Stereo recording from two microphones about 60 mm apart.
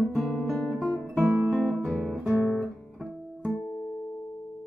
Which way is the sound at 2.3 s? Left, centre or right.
Right.